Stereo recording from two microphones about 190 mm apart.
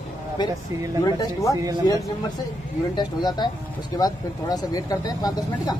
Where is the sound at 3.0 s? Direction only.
20° left (ahead or behind).